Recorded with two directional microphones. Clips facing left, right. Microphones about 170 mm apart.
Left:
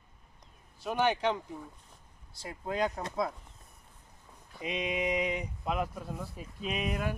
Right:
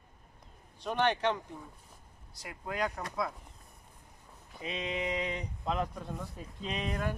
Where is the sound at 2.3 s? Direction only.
25° left (ahead or behind).